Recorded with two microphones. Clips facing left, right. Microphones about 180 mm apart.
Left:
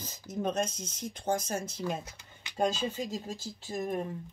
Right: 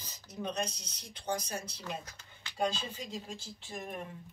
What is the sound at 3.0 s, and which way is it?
Speech, 40° left (ahead or behind).